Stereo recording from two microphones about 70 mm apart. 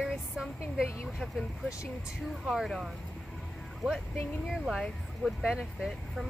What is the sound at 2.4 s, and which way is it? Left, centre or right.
Speech, centre.